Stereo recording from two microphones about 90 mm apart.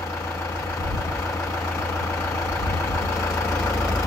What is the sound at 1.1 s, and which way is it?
Vehicle, 30° left (ahead or behind).